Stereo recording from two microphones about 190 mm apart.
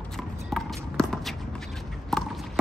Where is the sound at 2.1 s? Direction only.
Centre (ahead or behind).